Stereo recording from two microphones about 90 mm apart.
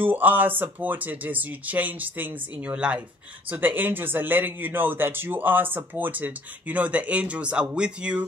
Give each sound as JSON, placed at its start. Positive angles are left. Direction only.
{"t": 0.0, "sound": "speech", "side_deg": -20}